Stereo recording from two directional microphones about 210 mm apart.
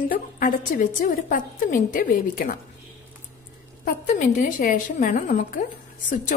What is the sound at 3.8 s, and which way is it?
A woman's voice, 40° left (ahead or behind).